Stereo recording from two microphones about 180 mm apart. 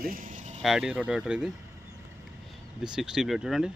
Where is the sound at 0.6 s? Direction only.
Centre (ahead or behind).